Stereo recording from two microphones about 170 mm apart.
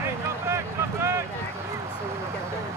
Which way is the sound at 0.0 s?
15° right (ahead or behind).